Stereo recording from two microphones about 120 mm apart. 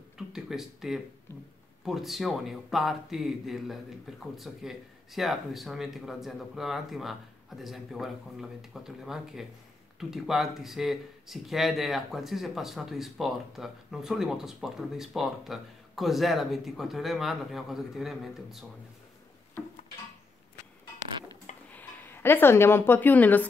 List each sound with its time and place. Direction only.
0.3 s speech: 5° right (ahead or behind)
21.6 s a woman's voice: 15° left (ahead or behind)